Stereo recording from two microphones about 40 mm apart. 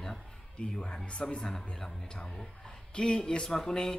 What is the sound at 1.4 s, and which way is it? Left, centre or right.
Speech, centre.